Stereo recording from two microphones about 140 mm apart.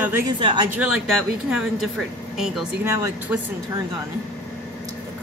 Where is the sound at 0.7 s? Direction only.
10° right (ahead or behind).